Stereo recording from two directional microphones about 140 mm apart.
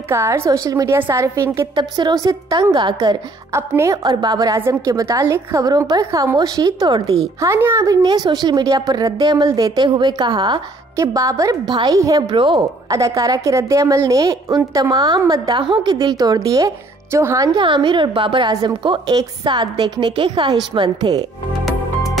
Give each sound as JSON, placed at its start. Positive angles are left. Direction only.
{"t": 0.1, "sound": "a woman's voice", "side_deg": -20}
{"t": 1.8, "sound": "a woman's voice", "side_deg": -30}
{"t": 2.7, "sound": "a woman's voice", "side_deg": -35}
{"t": 11.0, "sound": "a woman's voice", "side_deg": -25}
{"t": 12.9, "sound": "a woman's voice", "side_deg": -25}
{"t": 17.6, "sound": "a woman's voice", "side_deg": -35}